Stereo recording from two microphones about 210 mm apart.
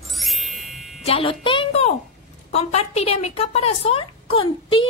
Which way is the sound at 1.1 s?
25° left (ahead or behind).